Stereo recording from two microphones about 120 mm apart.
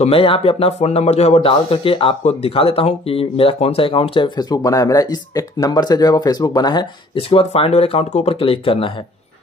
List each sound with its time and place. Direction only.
0.0 s speech: 50° left (ahead or behind)
7.2 s speech: 55° left (ahead or behind)